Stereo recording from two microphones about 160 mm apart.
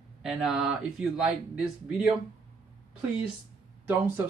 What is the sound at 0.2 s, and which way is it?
Speech, centre (ahead or behind).